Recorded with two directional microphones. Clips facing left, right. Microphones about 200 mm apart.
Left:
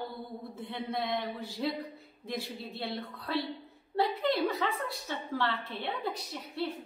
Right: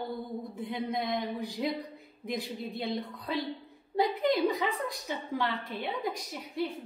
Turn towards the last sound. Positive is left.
turn(degrees=-10)  # may be behind; listen again after turning